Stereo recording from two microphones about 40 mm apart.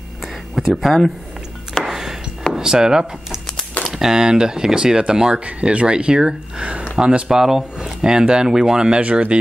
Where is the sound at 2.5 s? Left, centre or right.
Centre.